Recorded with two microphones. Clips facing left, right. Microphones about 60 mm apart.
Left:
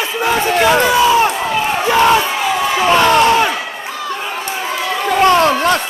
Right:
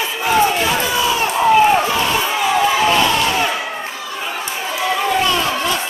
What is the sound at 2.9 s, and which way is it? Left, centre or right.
Speech, left.